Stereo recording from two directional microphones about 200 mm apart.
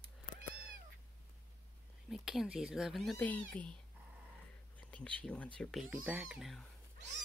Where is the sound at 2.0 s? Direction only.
Centre (ahead or behind).